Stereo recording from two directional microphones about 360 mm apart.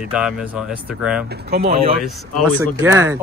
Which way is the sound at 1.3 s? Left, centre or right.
Right.